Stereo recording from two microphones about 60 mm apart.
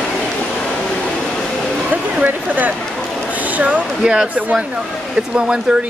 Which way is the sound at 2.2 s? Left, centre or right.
Right.